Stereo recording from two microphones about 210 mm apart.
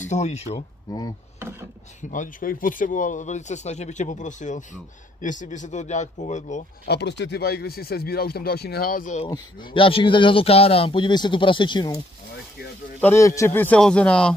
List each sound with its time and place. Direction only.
0.0 s speech: 35° left (ahead or behind)
0.6 s speech: 15° left (ahead or behind)
2.0 s speech: 40° left (ahead or behind)
6.9 s speech: 55° left (ahead or behind); by 9.3 s 35° left (ahead or behind)
9.3 s a man's voice: 20° left (ahead or behind)
13.0 s speech: 15° left (ahead or behind)